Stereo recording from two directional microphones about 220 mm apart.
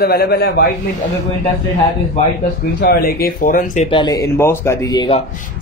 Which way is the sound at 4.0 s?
15° left (ahead or behind).